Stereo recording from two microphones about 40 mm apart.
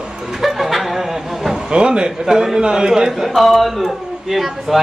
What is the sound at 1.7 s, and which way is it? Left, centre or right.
A woman's voice, right.